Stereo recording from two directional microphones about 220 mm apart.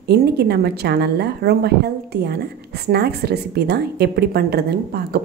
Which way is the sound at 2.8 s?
45° right (ahead or behind).